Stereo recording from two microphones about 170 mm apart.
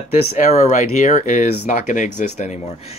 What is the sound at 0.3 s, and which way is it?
Speech, 40° left (ahead or behind).